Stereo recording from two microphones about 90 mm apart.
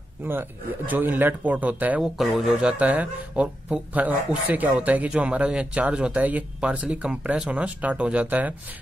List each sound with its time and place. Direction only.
0.2 s speech: 25° right (ahead or behind)
2.1 s speech: 5° right (ahead or behind)
2.8 s speech: 15° right (ahead or behind)